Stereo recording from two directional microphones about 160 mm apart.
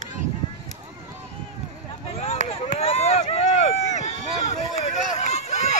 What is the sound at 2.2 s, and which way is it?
Run, 40° left (ahead or behind).